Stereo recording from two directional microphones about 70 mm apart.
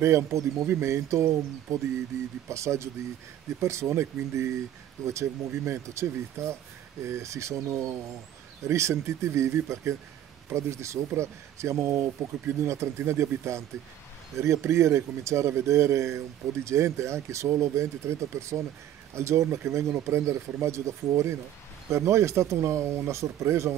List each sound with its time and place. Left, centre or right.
0.0 s speech: right